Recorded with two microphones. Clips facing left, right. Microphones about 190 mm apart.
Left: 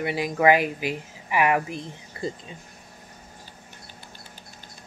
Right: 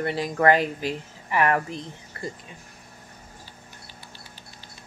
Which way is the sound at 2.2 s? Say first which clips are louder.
Left 4 dB; 20° left (ahead or behind).